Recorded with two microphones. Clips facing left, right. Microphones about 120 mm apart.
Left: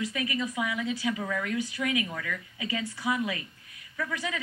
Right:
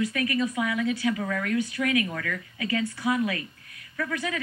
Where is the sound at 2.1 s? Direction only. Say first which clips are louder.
Right 3 dB; 60° right (ahead or behind).